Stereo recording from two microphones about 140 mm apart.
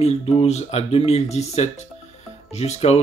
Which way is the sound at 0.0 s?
45° left (ahead or behind).